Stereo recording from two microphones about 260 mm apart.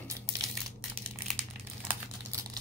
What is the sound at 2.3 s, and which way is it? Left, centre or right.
Crumpling, centre.